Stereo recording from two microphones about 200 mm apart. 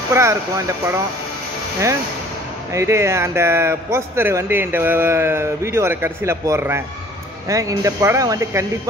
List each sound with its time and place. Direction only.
0.1 s a man's voice: 15° right (ahead or behind)
2.7 s a man's voice: 15° right (ahead or behind)